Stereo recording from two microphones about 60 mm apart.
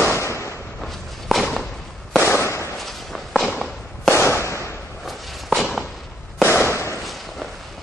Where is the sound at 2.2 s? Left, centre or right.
Left.